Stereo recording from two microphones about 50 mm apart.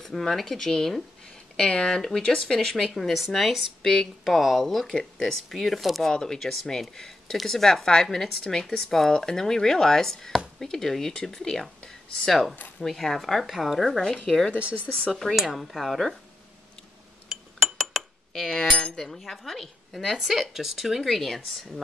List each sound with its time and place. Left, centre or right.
0.0 s a woman's voice: centre
4.9 s speech: centre
5.3 s a woman's voice: centre
15.1 s a woman's voice: centre
17.3 s chink: centre
18.7 s cutlery: centre
18.9 s a woman's voice: centre